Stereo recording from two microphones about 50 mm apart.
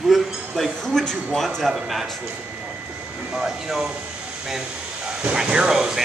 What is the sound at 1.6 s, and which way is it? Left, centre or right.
Speech, centre.